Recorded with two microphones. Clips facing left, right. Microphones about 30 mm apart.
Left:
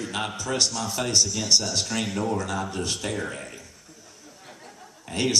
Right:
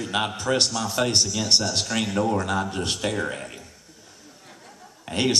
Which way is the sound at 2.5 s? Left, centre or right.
Right.